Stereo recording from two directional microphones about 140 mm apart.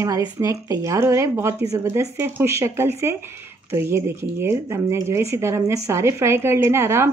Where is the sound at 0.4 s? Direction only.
20° right (ahead or behind).